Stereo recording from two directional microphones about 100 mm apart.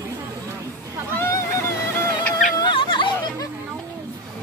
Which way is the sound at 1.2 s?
30° left (ahead or behind).